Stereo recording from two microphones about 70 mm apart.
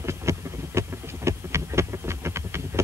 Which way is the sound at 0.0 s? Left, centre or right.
Right.